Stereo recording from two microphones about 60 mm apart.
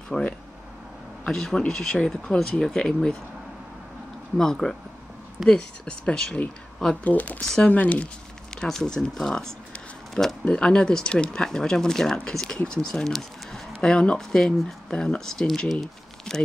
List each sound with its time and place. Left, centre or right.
0.1 s speech: centre
4.4 s speech: centre
7.1 s speech: left
7.4 s speech: centre
7.7 s speech: left
8.5 s speech: centre